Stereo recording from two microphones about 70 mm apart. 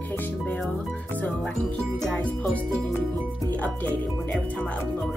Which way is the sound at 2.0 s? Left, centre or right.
Centre.